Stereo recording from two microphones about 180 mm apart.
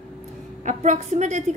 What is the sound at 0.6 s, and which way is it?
Speech, 40° right (ahead or behind).